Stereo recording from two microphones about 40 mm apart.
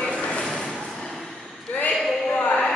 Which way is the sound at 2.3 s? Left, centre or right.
Left.